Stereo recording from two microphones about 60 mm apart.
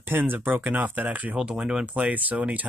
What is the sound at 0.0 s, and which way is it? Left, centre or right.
Speech, right.